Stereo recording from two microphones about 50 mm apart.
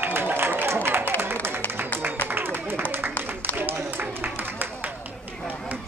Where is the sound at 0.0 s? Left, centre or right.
Right.